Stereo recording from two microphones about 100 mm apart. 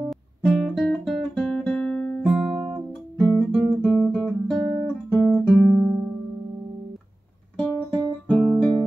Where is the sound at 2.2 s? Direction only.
10° right (ahead or behind).